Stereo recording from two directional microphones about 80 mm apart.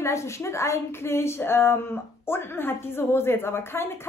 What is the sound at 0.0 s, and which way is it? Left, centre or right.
A woman's voice, left.